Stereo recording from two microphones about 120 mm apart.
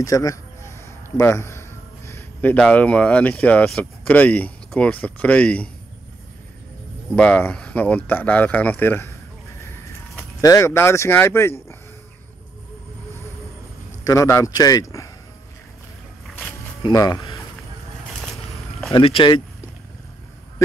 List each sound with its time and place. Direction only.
0.0 s a sound: 30° left (ahead or behind)
2.6 s speech: 10° left (ahead or behind)
7.2 s speech: 10° left (ahead or behind)
9.6 s a sound: 20° left (ahead or behind)
14.0 s speech: 25° left (ahead or behind)
16.8 s speech: 35° left (ahead or behind)
18.9 s speech: 45° left (ahead or behind)